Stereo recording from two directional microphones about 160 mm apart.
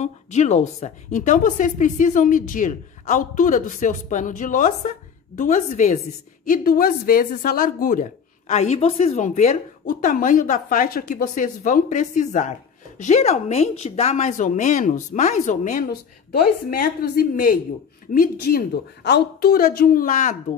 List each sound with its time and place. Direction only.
0.0 s a woman's voice: 45° left (ahead or behind)
15.9 s a woman's voice: 70° left (ahead or behind)
19.0 s a woman's voice: 85° left; by 20.3 s 55° left (ahead or behind)